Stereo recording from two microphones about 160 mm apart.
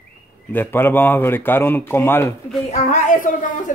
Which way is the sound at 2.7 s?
50° left (ahead or behind).